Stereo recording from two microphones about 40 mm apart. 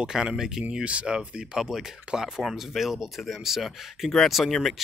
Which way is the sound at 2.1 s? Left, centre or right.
Right.